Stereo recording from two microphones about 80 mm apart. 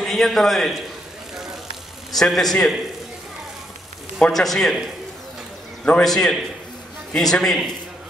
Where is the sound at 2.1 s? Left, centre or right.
Centre.